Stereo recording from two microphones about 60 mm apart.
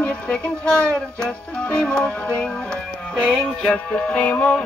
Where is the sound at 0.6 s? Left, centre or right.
Centre.